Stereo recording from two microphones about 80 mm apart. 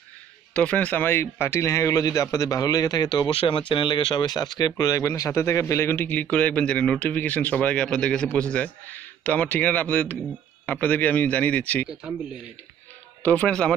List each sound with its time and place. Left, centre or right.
0.5 s a man's voice: centre
13.2 s speech: centre